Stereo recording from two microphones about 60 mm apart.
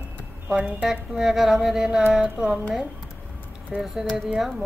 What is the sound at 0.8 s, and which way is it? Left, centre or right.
Music, centre.